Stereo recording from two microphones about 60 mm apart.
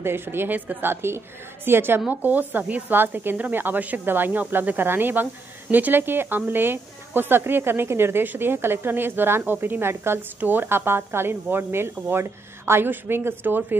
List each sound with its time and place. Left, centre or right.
0.0 s a woman's voice: right